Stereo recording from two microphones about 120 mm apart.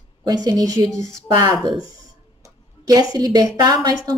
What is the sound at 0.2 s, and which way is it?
A woman's voice, 35° right (ahead or behind).